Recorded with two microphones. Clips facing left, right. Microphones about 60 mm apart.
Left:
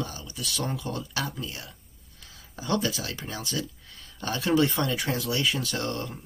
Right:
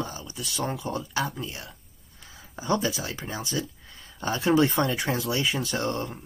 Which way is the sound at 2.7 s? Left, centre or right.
Centre.